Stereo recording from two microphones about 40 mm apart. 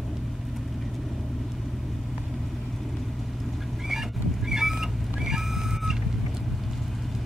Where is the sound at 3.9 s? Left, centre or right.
Centre.